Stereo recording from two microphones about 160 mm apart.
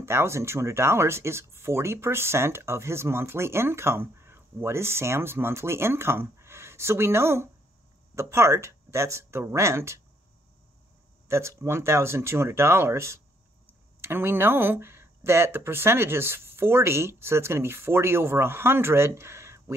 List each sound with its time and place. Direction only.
0.0 s speech: 15° right (ahead or behind)
11.2 s speech: 15° right (ahead or behind)